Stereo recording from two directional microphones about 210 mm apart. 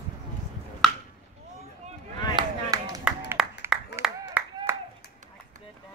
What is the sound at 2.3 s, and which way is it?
Chop, 15° right (ahead or behind).